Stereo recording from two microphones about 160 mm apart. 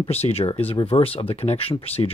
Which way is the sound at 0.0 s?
40° left (ahead or behind).